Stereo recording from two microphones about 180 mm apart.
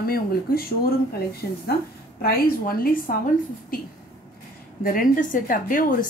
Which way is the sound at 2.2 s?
55° left (ahead or behind).